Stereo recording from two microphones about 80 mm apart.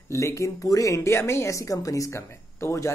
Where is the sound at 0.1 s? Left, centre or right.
Left.